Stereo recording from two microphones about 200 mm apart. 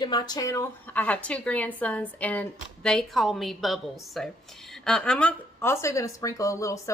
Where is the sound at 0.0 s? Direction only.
20° left (ahead or behind).